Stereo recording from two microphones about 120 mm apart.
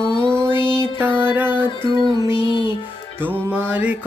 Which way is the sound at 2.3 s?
40° left (ahead or behind).